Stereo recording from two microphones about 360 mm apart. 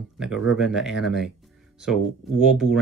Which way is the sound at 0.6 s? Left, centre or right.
Centre.